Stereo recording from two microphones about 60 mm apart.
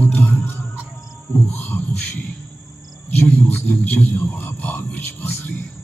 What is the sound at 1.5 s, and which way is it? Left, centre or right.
Beatboxing, left.